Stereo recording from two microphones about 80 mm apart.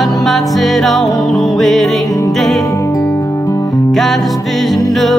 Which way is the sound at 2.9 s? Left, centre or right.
Left.